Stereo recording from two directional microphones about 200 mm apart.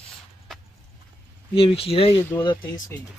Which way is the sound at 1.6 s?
30° left (ahead or behind).